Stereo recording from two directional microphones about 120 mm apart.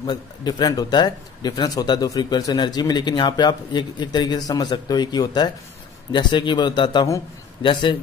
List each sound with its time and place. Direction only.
0.0 s speech: 35° left (ahead or behind)